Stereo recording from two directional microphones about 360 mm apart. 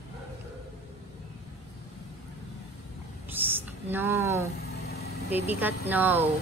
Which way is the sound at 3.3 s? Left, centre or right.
Centre.